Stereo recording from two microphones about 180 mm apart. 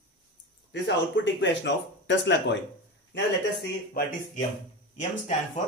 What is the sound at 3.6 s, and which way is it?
Speech, 55° left (ahead or behind).